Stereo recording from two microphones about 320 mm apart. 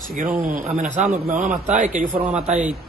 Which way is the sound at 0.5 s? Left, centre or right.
Right.